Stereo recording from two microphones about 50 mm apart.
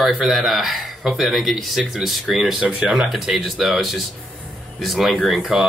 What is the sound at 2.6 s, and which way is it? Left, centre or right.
Speech, centre.